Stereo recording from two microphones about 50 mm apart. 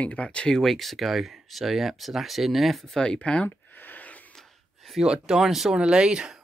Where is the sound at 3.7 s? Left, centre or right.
Left.